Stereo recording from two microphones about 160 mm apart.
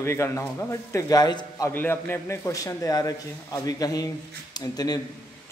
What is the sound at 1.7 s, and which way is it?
A man's voice, 15° left (ahead or behind).